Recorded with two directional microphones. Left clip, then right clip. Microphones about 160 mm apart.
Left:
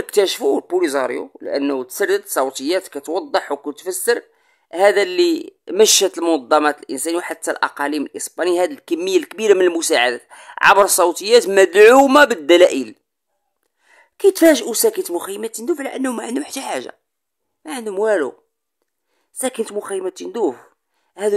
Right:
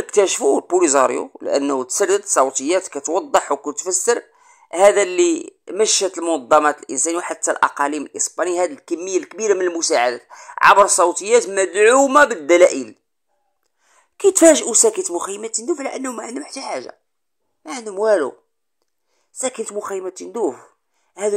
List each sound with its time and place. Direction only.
0.0 s speech: 20° left (ahead or behind)
0.7 s speech: 5° left (ahead or behind)
2.3 s speech: 15° left (ahead or behind)
5.8 s speech: 35° left (ahead or behind)
6.4 s a woman's voice: 20° left (ahead or behind)
11.5 s a man's voice: 45° left (ahead or behind)
12.2 s speech: 35° left (ahead or behind)
13.8 s a woman's voice: 20° left (ahead or behind)
18.0 s speech: 15° left (ahead or behind)
19.4 s speech: 25° left (ahead or behind)